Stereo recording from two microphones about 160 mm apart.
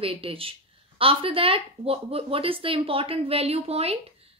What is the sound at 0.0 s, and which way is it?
A woman's voice, 35° right (ahead or behind).